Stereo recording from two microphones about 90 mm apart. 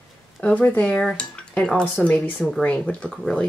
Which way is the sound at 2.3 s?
Centre (ahead or behind).